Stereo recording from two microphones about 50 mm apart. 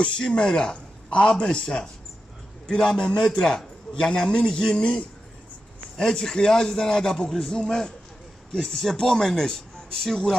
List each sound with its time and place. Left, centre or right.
0.0 s a man's voice: left